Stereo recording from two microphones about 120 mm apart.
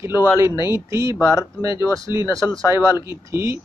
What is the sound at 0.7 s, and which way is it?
Speech, 25° right (ahead or behind).